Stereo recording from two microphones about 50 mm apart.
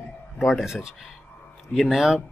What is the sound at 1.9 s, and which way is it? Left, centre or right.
Speech, centre.